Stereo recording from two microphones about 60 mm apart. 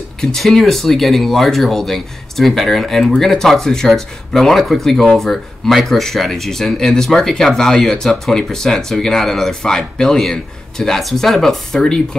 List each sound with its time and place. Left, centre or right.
0.2 s speech: centre